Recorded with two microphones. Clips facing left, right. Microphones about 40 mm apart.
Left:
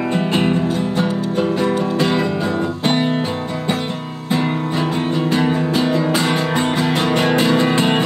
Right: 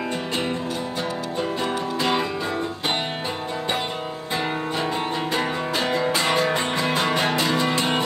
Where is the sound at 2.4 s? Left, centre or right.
Left.